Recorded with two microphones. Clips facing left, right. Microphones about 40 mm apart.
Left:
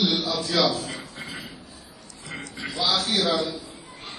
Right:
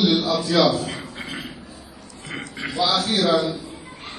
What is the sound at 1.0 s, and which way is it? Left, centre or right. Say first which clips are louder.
Beatboxing: right 4 dB; right.